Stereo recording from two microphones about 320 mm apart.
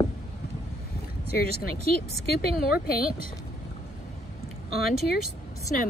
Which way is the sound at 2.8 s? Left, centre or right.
Left.